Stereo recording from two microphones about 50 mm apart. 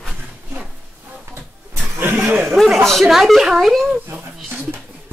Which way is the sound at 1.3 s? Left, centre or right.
Right.